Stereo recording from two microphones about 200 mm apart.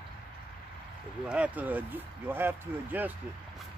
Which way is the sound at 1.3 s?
5° right (ahead or behind).